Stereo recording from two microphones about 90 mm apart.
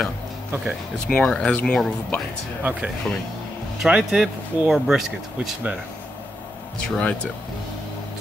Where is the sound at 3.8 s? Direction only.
10° right (ahead or behind).